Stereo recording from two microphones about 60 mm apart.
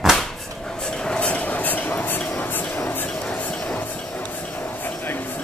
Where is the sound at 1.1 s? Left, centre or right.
Centre.